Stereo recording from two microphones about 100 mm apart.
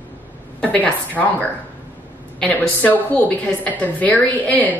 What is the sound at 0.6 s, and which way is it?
A woman's voice, 15° left (ahead or behind).